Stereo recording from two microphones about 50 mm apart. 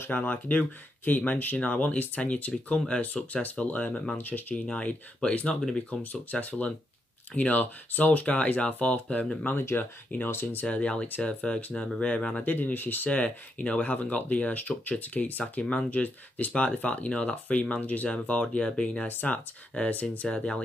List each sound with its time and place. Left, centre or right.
0.0 s speech: left; by 4.2 s centre
4.2 s speech: left
4.6 s speech: left
12.4 s speech: left
15.6 s speech: centre
15.9 s speech: left
18.1 s speech: left
18.9 s speech: left